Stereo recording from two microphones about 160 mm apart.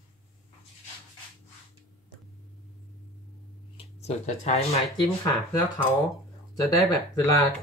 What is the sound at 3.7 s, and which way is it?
Speech, 40° left (ahead or behind).